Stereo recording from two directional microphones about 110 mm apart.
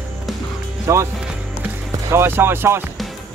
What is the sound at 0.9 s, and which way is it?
Speech, 25° right (ahead or behind).